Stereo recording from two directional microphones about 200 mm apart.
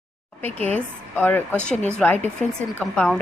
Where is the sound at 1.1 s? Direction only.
10° left (ahead or behind).